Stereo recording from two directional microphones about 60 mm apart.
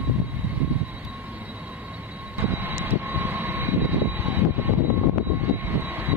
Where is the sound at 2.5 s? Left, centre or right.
Right.